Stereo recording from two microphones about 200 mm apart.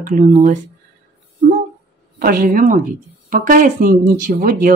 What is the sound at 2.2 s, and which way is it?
Speech, 50° right (ahead or behind).